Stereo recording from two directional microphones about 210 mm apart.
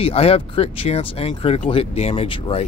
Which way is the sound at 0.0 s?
30° left (ahead or behind).